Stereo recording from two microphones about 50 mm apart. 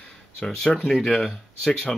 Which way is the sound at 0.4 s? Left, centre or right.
Centre.